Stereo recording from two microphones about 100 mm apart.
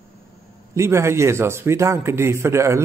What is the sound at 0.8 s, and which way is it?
A man's voice, 25° right (ahead or behind).